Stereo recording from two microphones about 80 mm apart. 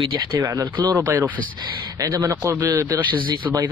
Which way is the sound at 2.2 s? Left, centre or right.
Right.